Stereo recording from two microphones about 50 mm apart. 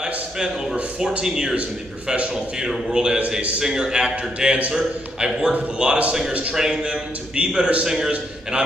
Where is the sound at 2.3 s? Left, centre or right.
Centre.